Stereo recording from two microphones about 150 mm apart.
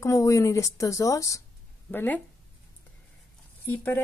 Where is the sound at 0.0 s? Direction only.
20° left (ahead or behind).